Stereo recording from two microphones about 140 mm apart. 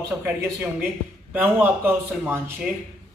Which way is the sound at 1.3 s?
15° right (ahead or behind).